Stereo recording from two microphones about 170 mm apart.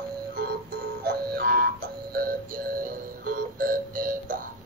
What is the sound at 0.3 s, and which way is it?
Music, 65° right (ahead or behind).